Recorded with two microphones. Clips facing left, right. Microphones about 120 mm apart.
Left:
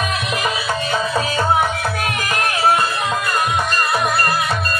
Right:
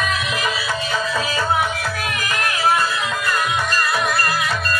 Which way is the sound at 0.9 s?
25° left (ahead or behind).